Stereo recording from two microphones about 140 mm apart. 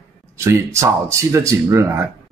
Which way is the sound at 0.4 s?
20° right (ahead or behind).